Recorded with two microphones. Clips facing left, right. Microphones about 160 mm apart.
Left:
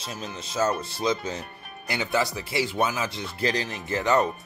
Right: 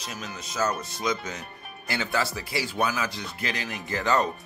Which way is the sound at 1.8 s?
20° left (ahead or behind).